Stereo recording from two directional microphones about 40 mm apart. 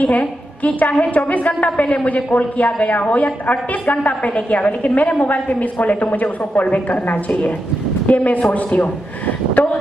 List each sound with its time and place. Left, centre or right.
0.0 s a woman's voice: left